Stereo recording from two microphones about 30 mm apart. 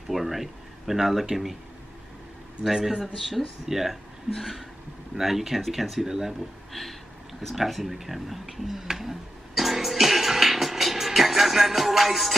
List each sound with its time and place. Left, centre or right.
0.1 s speech: centre
2.9 s speech: centre
5.2 s speech: centre
6.0 s speech: centre
6.7 s a sound: centre
7.5 s speech: centre
8.9 s music: centre